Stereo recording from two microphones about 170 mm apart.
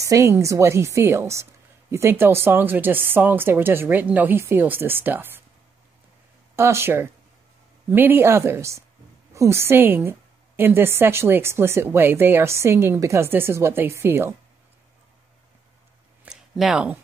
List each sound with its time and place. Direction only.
0.0 s speech: 15° right (ahead or behind)
6.5 s speech: 15° right (ahead or behind)
16.3 s a sound: centre (ahead or behind)